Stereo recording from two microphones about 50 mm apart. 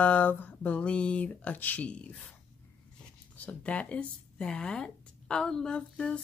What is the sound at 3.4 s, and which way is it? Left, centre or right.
Speech, left.